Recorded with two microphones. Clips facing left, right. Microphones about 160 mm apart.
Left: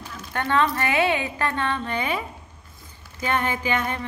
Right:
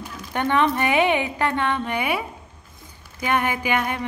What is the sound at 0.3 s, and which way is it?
A woman's voice, 15° right (ahead or behind).